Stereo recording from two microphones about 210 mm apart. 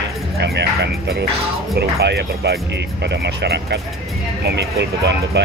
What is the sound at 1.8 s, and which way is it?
Speech, 50° right (ahead or behind).